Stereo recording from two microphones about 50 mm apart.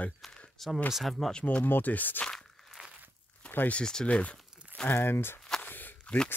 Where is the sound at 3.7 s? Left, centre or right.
Centre.